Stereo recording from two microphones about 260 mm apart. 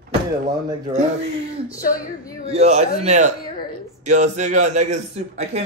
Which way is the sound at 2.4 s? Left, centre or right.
Right.